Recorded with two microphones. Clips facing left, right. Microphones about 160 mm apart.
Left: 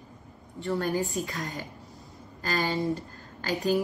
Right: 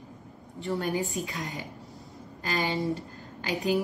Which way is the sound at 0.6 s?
20° right (ahead or behind).